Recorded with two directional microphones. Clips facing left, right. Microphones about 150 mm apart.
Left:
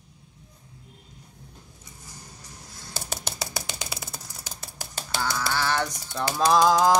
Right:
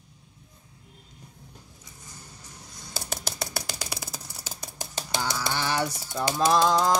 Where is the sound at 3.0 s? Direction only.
5° right (ahead or behind).